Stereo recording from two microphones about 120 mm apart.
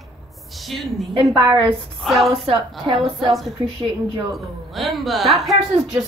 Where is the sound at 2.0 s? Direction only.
Centre (ahead or behind).